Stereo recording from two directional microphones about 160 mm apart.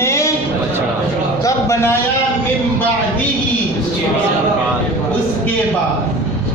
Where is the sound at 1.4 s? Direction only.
15° left (ahead or behind).